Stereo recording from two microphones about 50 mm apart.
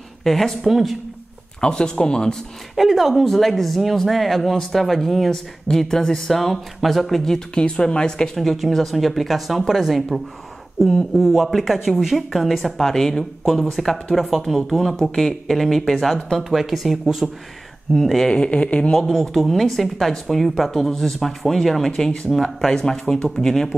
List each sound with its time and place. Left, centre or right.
0.2 s a woman's voice: centre
1.6 s speech: centre
2.7 s a woman's voice: centre
8.4 s a woman's voice: centre
11.1 s a woman's voice: centre
18.3 s speech: left
18.9 s a woman's voice: centre